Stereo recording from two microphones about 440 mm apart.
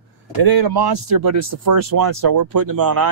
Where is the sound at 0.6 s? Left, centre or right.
Right.